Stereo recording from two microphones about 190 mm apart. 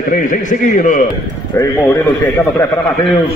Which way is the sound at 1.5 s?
15° left (ahead or behind).